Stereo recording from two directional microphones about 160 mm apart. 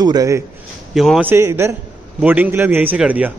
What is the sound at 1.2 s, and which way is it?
A man's voice, 15° right (ahead or behind).